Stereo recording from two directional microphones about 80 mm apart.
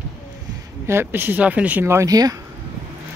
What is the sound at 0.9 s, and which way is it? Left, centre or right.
Speech, right.